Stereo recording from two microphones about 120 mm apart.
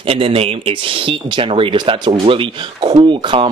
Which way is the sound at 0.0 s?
55° right (ahead or behind).